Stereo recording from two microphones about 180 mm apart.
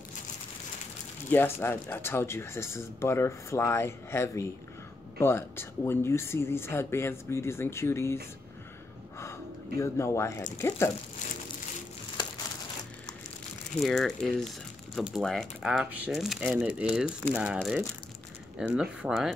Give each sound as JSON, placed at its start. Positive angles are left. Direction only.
{"t": 1.3, "sound": "speech", "side_deg": 10}
{"t": 9.2, "sound": "speech", "side_deg": 15}
{"t": 13.8, "sound": "speech", "side_deg": 0}